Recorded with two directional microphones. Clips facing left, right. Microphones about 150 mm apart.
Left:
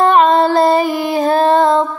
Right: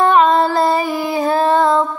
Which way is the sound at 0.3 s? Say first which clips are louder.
Left 3 dB; 20° left (ahead or behind).